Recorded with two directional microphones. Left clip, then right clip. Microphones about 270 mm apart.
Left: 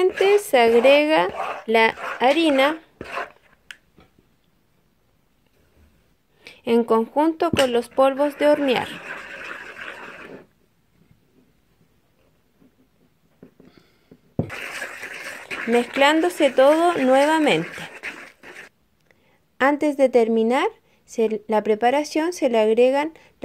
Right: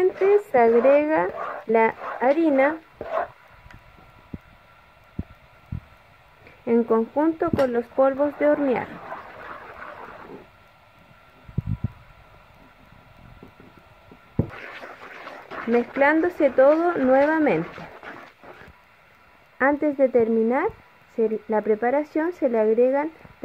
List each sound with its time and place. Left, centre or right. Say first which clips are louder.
0.0 s speech: left 2 dB; left
6.6 s speech: left 2 dB; centre
14.7 s a sound: left 7 dB; centre
15.7 s speech: left 2 dB; left
19.6 s speech: left 2 dB; left